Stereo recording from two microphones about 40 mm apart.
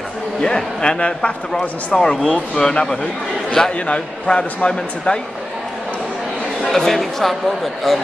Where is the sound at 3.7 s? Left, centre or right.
Left.